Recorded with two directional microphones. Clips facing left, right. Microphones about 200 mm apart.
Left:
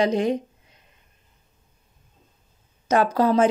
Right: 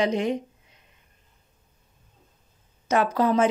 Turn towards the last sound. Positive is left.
turn(degrees=35)  # may be behind; listen again after turning